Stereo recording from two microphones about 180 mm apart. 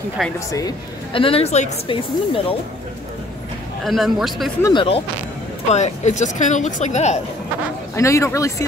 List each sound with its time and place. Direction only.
0.5 s a woman's voice: 20° left (ahead or behind)
3.8 s a man's voice: centre (ahead or behind)
4.6 s speech: 30° left (ahead or behind)
5.7 s a woman's voice: 40° left (ahead or behind)
7.9 s a man's voice: 15° left (ahead or behind)